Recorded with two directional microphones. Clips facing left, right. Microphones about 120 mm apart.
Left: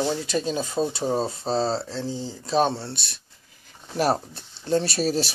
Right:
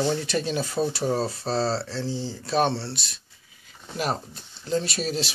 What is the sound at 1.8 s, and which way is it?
Speech, 15° left (ahead or behind).